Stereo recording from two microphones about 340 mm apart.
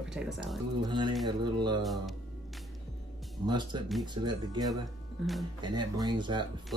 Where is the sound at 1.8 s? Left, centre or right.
Centre.